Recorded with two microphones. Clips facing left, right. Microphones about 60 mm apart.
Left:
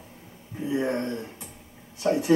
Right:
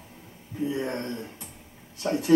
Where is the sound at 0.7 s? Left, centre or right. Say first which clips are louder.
Left 6 dB; centre.